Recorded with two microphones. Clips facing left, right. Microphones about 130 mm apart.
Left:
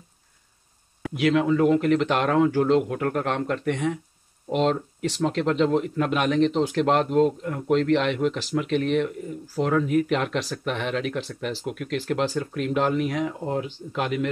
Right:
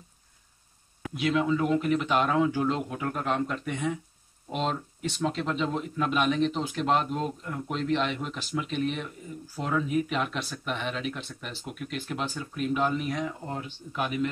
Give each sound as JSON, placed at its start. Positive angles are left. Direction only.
{"t": 1.1, "sound": "speech", "side_deg": 70}
{"t": 7.7, "sound": "speech", "side_deg": 80}
{"t": 9.6, "sound": "speech", "side_deg": 70}